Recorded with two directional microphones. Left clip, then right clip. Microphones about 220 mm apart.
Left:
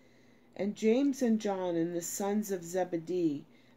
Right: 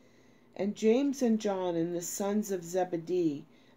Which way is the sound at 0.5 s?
10° right (ahead or behind).